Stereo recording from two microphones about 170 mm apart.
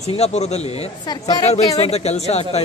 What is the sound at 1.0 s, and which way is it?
Speech, 25° left (ahead or behind).